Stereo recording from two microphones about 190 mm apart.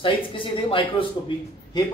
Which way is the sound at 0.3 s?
25° left (ahead or behind).